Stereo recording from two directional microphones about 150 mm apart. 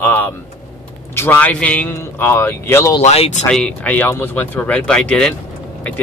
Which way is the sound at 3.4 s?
5° left (ahead or behind).